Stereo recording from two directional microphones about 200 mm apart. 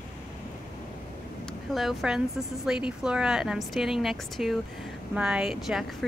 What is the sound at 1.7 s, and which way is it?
A woman's voice, centre (ahead or behind).